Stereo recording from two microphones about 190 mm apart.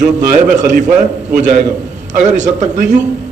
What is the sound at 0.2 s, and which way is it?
Speech, 45° right (ahead or behind).